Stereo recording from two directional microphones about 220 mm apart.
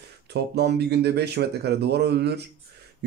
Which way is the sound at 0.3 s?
50° right (ahead or behind).